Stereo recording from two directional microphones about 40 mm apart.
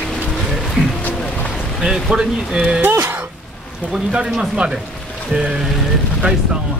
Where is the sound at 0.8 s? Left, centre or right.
Centre.